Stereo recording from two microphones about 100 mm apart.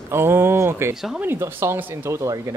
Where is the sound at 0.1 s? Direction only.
25° right (ahead or behind).